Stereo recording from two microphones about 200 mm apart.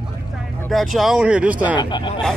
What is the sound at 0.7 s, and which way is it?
Speech, centre (ahead or behind).